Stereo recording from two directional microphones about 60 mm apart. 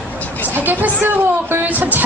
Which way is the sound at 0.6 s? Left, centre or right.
Right.